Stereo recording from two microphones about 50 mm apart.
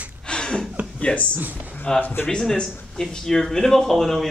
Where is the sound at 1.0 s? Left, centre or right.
Left.